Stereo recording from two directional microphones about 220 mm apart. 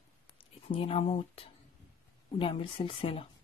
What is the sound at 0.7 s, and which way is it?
Speech, 25° left (ahead or behind).